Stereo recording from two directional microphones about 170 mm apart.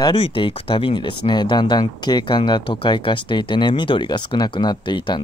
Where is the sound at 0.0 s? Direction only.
30° left (ahead or behind).